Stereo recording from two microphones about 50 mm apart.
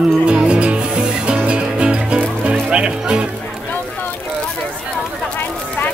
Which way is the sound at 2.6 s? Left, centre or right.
Centre.